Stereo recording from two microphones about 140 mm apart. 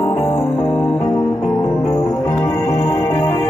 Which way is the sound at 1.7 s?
5° right (ahead or behind).